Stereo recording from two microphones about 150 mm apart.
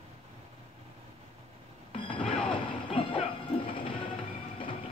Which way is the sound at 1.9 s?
35° left (ahead or behind).